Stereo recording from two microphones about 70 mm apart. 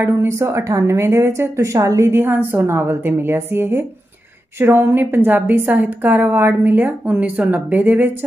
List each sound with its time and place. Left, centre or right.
0.0 s a woman's voice: right
2.1 s a woman's voice: right